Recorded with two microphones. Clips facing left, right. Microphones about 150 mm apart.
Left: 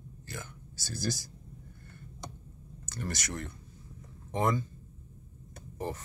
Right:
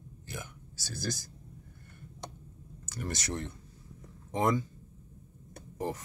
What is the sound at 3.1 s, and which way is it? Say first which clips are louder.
Speech: right 3 dB; 30° right (ahead or behind).